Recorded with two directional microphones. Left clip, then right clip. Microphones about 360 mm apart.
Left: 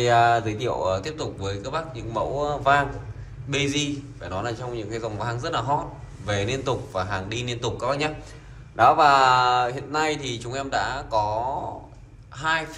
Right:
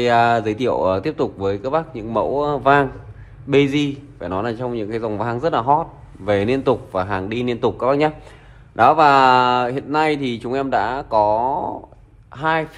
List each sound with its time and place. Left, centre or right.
0.0 s a man's voice: right